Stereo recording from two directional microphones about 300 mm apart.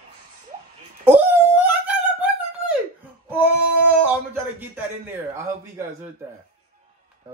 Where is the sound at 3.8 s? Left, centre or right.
Centre.